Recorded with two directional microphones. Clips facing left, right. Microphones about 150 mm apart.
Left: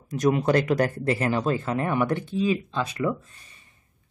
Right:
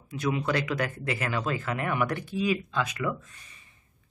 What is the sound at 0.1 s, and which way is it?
Speech, 40° left (ahead or behind).